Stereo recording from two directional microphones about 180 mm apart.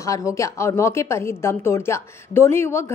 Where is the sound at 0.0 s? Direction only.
15° left (ahead or behind).